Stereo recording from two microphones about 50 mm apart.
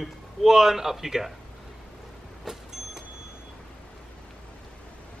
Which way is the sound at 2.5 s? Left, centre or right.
Centre.